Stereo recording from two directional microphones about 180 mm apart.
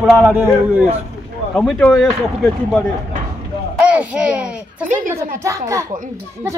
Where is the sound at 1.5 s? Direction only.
5° left (ahead or behind).